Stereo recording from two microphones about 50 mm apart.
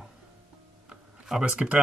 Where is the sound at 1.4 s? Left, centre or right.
Right.